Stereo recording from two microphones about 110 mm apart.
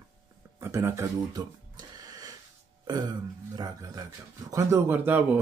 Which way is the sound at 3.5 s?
35° right (ahead or behind).